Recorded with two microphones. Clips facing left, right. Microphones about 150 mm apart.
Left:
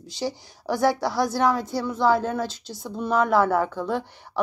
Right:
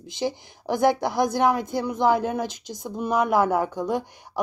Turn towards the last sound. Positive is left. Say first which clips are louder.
# even
turn(degrees=-15)  # may be behind; listen again after turning